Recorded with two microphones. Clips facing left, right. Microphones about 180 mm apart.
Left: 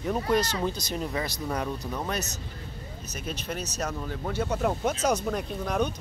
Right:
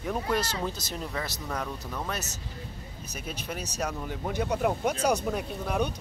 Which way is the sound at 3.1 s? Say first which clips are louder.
Left 2 dB; 10° right (ahead or behind).